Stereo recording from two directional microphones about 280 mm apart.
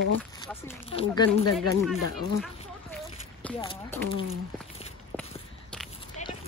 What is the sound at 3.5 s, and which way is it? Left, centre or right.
Speech, centre.